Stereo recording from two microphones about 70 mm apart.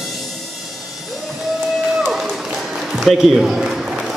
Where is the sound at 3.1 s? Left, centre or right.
Centre.